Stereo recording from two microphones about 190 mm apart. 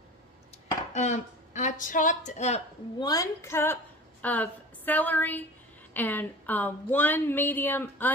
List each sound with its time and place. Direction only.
0.9 s a woman's voice: 40° left (ahead or behind)
3.0 s a woman's voice: 20° left (ahead or behind)